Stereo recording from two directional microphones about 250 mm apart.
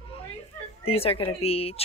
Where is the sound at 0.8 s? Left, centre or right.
Left.